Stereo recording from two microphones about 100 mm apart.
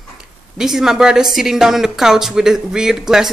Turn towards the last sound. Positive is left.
turn(degrees=-5)  # may be behind; listen again after turning